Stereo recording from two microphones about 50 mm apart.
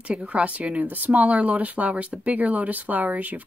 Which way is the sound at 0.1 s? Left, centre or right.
Right.